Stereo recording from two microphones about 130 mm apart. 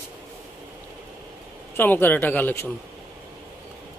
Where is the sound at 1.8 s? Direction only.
15° left (ahead or behind).